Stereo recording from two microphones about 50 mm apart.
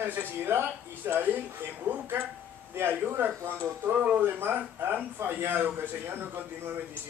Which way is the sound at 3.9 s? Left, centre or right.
Right.